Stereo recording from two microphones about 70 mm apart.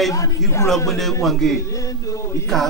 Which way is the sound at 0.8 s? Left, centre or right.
Centre.